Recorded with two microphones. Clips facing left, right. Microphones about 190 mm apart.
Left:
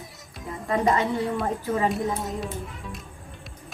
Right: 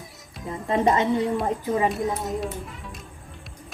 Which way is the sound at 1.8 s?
Centre (ahead or behind).